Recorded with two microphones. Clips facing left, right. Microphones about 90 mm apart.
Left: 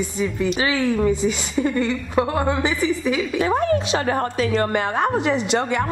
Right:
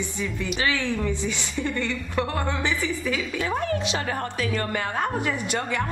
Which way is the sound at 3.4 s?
40° left (ahead or behind).